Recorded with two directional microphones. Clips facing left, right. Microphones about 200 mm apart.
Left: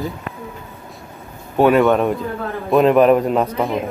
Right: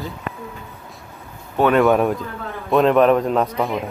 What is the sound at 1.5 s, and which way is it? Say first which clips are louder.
Speech: left 3 dB; 10° left (ahead or behind).